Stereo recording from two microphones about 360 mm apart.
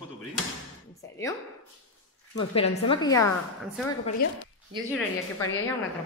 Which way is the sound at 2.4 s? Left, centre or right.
Centre.